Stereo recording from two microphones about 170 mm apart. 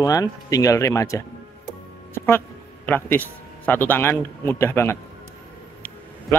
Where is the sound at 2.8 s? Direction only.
10° left (ahead or behind).